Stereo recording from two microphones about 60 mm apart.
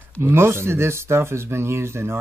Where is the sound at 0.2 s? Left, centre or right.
Right.